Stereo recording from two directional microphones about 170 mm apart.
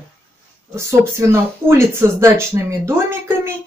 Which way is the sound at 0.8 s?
15° right (ahead or behind).